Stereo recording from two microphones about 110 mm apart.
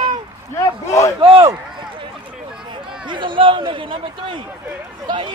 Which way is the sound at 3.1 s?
50° right (ahead or behind).